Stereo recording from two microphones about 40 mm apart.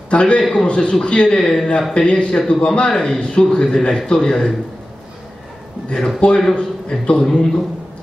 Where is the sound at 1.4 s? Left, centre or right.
Centre.